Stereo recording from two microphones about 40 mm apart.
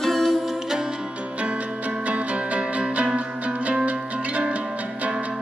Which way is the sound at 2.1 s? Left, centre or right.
Right.